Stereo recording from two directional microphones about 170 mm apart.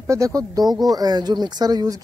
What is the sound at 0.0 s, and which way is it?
Speech, 20° right (ahead or behind).